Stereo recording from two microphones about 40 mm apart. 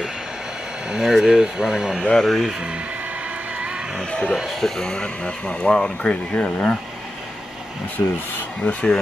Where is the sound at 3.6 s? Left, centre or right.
Right.